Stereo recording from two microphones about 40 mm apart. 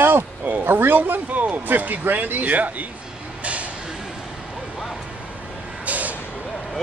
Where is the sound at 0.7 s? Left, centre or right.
Right.